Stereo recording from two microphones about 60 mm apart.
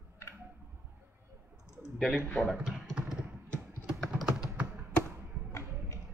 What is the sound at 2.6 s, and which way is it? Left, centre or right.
Computer keyboard, centre.